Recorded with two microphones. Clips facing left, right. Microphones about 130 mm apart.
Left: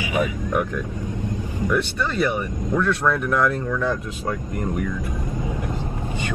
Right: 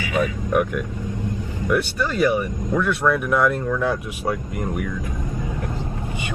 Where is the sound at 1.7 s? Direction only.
10° right (ahead or behind).